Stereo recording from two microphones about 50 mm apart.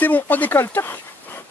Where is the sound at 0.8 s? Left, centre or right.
Left.